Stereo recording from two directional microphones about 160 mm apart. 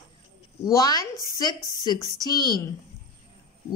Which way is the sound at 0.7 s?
20° left (ahead or behind).